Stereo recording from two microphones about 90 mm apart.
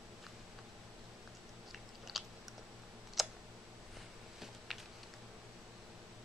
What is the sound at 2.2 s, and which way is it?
Chewing, centre (ahead or behind).